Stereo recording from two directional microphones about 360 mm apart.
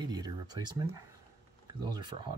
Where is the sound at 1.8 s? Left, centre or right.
Centre.